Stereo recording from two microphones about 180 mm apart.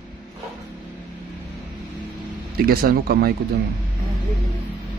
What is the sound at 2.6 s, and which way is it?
Speech, 55° right (ahead or behind).